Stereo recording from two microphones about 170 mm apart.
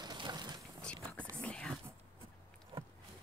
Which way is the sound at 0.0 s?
25° right (ahead or behind).